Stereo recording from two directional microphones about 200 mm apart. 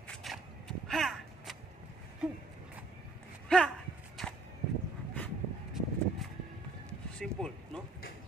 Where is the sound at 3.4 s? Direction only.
5° left (ahead or behind).